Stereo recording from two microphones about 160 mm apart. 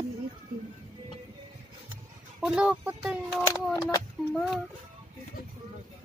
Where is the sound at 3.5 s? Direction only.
20° left (ahead or behind).